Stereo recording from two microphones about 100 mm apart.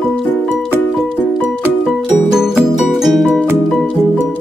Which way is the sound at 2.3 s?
5° right (ahead or behind).